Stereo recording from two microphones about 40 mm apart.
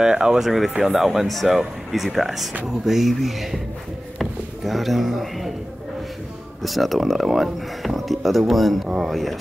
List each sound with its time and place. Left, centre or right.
0.0 s speech: centre
0.4 s speech: centre
4.2 s drawer open or close: centre
6.6 s speech: centre